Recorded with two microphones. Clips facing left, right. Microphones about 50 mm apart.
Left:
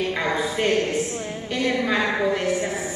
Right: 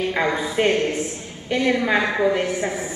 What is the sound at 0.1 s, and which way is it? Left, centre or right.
Speech, right.